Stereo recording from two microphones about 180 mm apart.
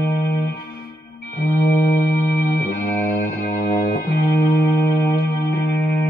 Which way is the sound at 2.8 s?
60° left (ahead or behind).